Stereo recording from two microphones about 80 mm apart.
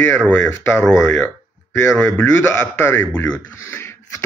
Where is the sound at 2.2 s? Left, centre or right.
Left.